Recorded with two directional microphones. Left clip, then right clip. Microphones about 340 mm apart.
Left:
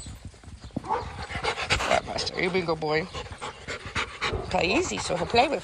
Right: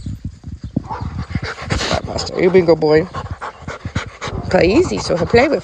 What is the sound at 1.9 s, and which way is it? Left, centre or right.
Speech, centre.